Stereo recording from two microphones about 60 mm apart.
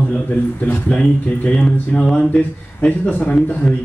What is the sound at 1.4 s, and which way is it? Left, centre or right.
Speech, left.